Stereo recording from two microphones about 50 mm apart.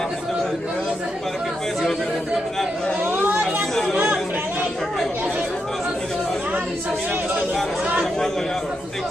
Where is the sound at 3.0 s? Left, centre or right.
Right.